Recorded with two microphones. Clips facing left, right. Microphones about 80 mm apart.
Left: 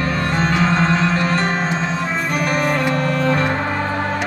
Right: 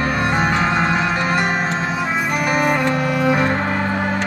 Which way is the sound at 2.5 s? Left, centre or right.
Centre.